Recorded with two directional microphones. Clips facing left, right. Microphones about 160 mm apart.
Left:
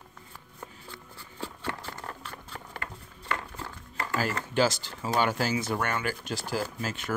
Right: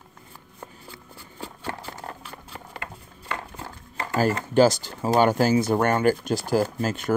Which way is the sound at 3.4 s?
20° right (ahead or behind).